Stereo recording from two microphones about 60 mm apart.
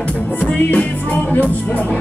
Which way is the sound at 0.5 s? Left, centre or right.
Left.